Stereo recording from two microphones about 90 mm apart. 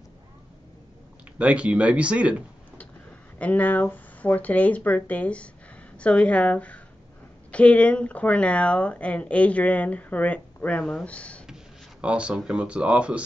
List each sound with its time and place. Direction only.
1.4 s speech: 15° right (ahead or behind)
3.3 s speech: 15° left (ahead or behind)
12.0 s speech: 10° right (ahead or behind)